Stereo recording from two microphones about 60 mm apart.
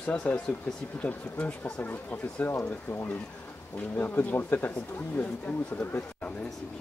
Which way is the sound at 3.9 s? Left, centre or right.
Left.